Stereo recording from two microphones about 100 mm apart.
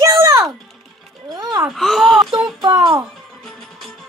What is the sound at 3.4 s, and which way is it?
Music, 5° left (ahead or behind).